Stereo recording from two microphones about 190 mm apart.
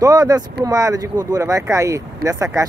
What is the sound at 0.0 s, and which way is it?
Speech, 20° right (ahead or behind).